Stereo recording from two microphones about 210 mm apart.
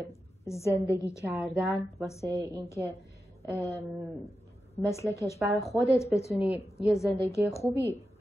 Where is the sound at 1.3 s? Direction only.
10° right (ahead or behind).